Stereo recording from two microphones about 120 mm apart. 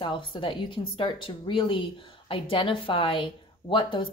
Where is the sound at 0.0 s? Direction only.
45° left (ahead or behind).